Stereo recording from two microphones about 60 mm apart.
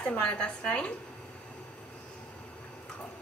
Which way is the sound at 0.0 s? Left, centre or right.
Left.